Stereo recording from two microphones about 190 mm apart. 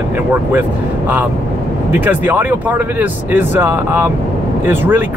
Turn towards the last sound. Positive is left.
turn(degrees=-10)  # may be behind; listen again after turning